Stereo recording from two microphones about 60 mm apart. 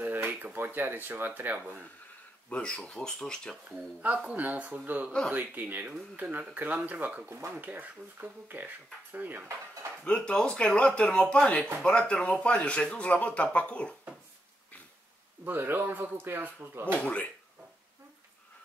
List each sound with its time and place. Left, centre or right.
0.0 s speech: right
2.5 s speech: centre
3.6 s speech: right
10.0 s speech: centre
15.4 s speech: right
17.0 s speech: left